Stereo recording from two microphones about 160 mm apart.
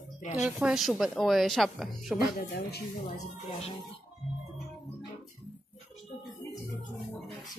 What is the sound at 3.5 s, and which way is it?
Speech, 40° left (ahead or behind).